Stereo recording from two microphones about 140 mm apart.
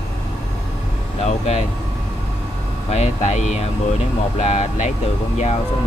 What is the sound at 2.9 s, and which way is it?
Speech, 55° left (ahead or behind).